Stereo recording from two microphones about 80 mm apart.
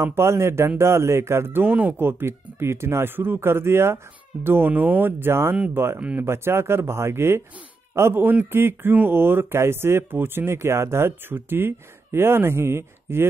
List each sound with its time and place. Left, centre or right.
0.0 s a man's voice: right
5.9 s speech: centre
6.2 s a man's voice: right